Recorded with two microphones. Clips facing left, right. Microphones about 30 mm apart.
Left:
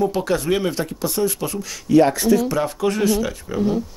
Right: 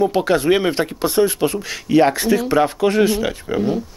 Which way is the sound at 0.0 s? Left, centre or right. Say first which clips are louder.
Right 4 dB; right.